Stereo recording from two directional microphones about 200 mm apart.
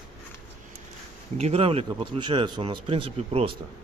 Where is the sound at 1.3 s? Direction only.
30° right (ahead or behind).